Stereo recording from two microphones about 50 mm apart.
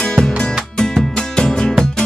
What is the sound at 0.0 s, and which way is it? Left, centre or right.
Music, centre.